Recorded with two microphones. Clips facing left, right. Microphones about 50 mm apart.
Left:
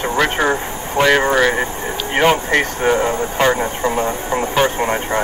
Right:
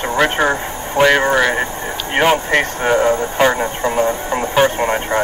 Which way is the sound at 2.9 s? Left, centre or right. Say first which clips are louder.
Right 4 dB; right.